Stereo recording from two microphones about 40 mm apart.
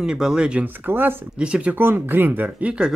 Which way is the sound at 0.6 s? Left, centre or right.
Right.